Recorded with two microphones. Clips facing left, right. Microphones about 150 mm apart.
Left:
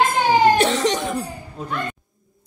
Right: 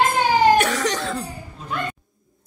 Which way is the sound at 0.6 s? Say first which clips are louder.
Left 2 dB; 25° left (ahead or behind).